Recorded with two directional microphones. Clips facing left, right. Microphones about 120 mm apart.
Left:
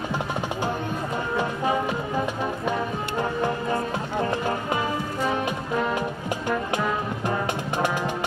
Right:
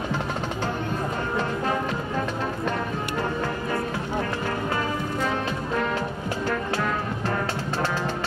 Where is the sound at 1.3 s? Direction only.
15° left (ahead or behind).